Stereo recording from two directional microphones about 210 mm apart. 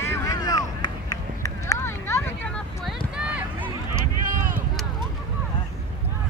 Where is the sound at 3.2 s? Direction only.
5° right (ahead or behind).